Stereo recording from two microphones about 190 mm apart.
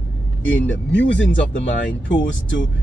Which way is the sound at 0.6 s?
70° left (ahead or behind).